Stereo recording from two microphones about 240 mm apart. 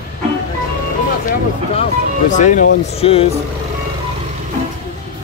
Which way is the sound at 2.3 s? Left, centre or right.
Left.